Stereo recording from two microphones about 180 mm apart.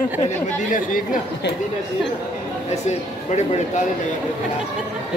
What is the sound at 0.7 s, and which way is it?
Speech, 50° left (ahead or behind).